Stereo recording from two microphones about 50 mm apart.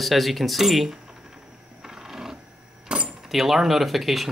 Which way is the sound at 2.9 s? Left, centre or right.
Centre.